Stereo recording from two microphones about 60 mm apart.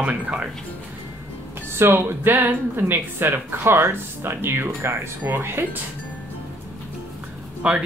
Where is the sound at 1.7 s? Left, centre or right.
Right.